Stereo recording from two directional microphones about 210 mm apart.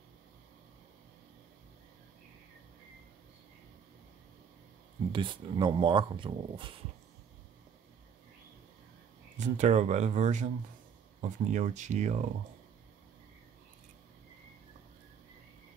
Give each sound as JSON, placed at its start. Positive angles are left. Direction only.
{"t": 5.1, "sound": "speech", "side_deg": -25}
{"t": 9.4, "sound": "speech", "side_deg": -35}